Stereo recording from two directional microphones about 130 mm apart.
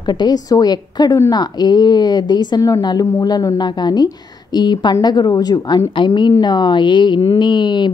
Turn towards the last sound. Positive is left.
turn(degrees=35)  # may be behind; listen again after turning